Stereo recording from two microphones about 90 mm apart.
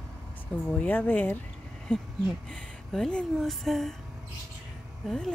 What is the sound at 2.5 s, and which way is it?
Speech, 10° left (ahead or behind).